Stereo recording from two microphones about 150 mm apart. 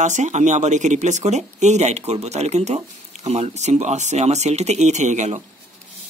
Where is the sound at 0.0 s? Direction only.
55° right (ahead or behind).